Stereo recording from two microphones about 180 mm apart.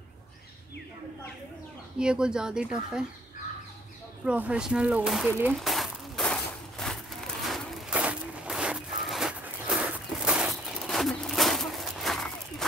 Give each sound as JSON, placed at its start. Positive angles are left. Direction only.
{"t": 2.0, "sound": "speech", "side_deg": -5}
{"t": 4.2, "sound": "speech", "side_deg": -5}
{"t": 5.5, "sound": "a sound", "side_deg": 0}
{"t": 7.4, "sound": "zipper", "side_deg": -5}